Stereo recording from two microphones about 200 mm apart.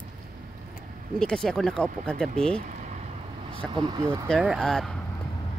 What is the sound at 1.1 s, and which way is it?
Speech, 5° left (ahead or behind).